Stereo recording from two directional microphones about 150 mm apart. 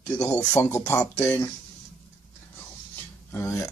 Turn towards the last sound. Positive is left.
turn(degrees=20)  # may be behind; listen again after turning